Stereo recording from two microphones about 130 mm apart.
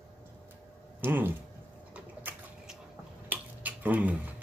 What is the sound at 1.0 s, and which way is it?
Speech, 15° right (ahead or behind).